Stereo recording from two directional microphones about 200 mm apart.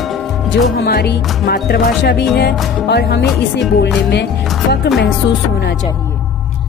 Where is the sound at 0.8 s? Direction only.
55° left (ahead or behind).